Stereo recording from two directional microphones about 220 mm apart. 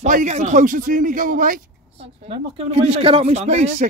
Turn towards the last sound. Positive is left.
turn(degrees=-30)  # may be behind; listen again after turning